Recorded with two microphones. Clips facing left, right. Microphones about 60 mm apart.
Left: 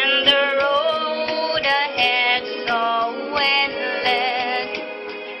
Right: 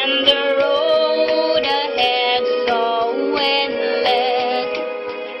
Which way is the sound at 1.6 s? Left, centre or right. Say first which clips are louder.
Right 2 dB; left.